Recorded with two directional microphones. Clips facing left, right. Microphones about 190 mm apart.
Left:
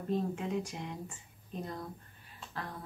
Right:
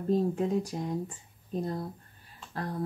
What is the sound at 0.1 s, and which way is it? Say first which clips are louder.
Speech: right 7 dB; 35° right (ahead or behind).